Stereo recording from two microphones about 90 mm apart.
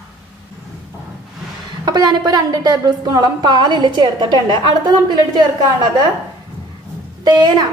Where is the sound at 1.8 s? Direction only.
50° right (ahead or behind).